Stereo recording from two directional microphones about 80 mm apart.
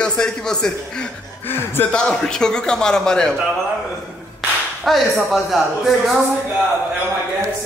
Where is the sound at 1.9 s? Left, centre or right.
Centre.